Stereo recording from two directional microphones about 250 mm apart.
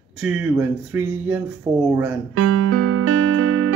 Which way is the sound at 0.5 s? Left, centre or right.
Centre.